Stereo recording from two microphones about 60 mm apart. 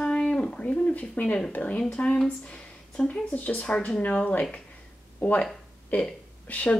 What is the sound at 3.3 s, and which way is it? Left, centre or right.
Speech, left.